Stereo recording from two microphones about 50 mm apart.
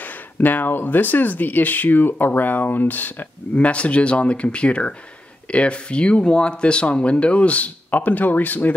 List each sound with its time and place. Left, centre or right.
0.0 s speech: left
3.5 s speech: left